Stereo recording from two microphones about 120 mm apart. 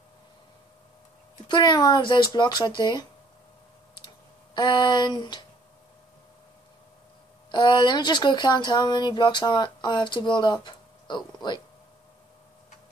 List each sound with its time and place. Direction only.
1.5 s speech: 35° left (ahead or behind)
4.6 s speech: 40° left (ahead or behind)
7.5 s speech: 40° left (ahead or behind)